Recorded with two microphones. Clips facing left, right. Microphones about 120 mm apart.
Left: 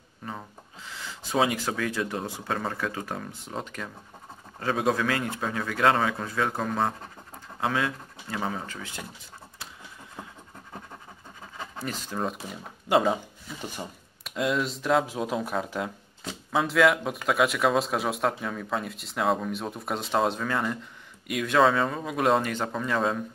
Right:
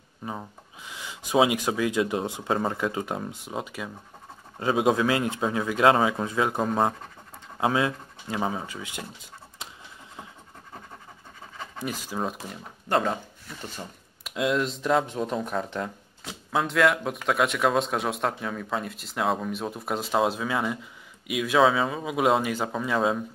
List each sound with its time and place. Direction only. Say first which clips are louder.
0.2 s a man's voice: right 3 dB; 15° right (ahead or behind)
11.8 s speech: right 1 dB; 10° right (ahead or behind)
12.8 s speech: left 2 dB; 10° left (ahead or behind)
14.2 s speech: right 2 dB; centre (ahead or behind)